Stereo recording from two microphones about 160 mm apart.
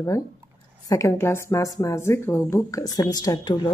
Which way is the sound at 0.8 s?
20° left (ahead or behind).